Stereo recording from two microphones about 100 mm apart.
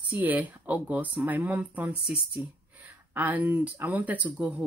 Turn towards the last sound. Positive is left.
turn(degrees=-15)  # may be behind; listen again after turning